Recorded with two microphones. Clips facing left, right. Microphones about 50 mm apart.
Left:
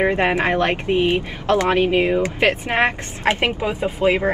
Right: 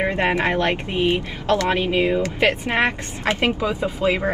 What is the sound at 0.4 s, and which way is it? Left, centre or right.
A woman's voice, left.